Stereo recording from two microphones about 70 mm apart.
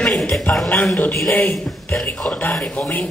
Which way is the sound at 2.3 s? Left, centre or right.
Centre.